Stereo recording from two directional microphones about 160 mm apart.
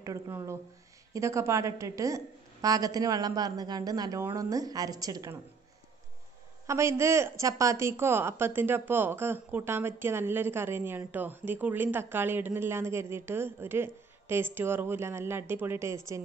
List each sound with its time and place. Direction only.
0.0 s a woman's voice: 20° right (ahead or behind)
6.7 s a woman's voice: 15° right (ahead or behind)